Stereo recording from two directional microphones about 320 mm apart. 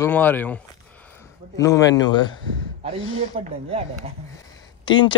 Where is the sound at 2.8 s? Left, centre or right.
Right.